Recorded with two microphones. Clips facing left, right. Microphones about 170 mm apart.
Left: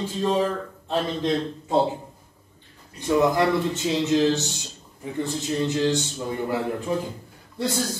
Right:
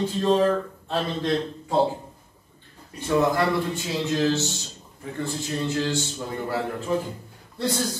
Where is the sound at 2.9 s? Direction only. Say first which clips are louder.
Left 2 dB; 20° left (ahead or behind).